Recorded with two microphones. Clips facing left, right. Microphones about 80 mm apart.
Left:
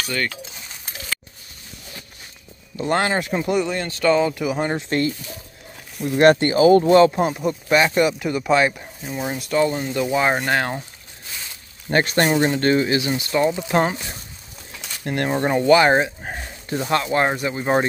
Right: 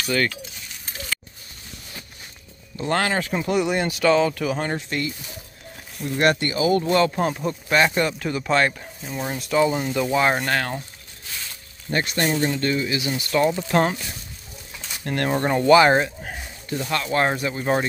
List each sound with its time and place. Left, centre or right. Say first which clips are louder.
0.0 s speech: right 2 dB; centre
2.8 s speech: left 2 dB; centre
3.6 s speech: right 3 dB; centre
4.0 s speech: left 2 dB; centre
4.7 s speech: left 5 dB; left
6.2 s speech: left 7 dB; left
7.1 s speech: left 3 dB; centre
10.5 s speech: left 3 dB; left
11.9 s speech: left 5 dB; left
13.1 s speech: left 1 dB; left
15.0 s speech: left 1 dB; centre
16.2 s a sound: left 3 dB; left
17.1 s speech: left 2 dB; centre
17.6 s speech: left 4 dB; left